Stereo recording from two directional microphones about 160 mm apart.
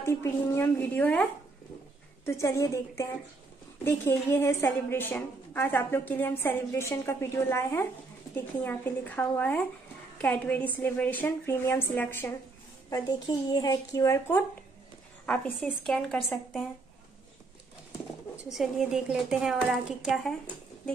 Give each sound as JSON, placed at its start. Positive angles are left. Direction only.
{"t": 0.0, "sound": "a woman's voice", "side_deg": 15}
{"t": 2.2, "sound": "a woman's voice", "side_deg": 20}
{"t": 12.9, "sound": "a woman's voice", "side_deg": 25}
{"t": 15.2, "sound": "speech", "side_deg": 5}
{"t": 18.3, "sound": "speech", "side_deg": -5}